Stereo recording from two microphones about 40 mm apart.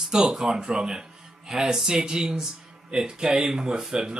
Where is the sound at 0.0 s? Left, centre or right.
Centre.